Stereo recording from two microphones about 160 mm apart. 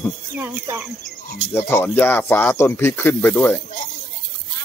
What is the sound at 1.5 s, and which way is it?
Speech, 15° left (ahead or behind).